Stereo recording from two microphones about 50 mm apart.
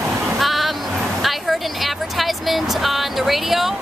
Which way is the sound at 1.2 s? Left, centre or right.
Centre.